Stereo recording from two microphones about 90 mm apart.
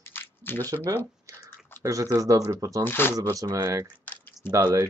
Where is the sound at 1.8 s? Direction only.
35° right (ahead or behind).